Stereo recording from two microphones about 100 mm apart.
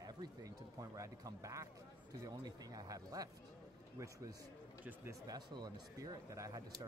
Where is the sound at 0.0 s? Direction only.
40° right (ahead or behind).